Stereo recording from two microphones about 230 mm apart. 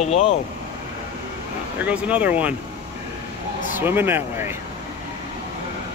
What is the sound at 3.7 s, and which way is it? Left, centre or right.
Speech, centre.